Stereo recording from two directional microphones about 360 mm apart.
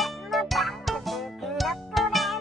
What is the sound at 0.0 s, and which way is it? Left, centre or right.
Music, centre.